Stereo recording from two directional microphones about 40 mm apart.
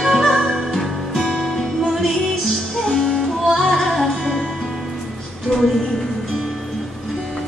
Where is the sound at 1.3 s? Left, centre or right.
Centre.